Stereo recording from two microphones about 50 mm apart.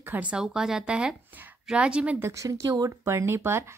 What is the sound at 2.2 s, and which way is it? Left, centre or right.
Speech, right.